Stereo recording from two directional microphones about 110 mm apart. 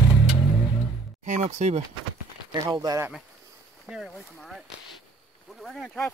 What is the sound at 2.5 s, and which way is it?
Speech, 40° right (ahead or behind).